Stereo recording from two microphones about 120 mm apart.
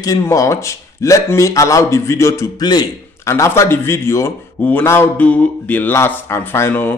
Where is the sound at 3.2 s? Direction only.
25° left (ahead or behind).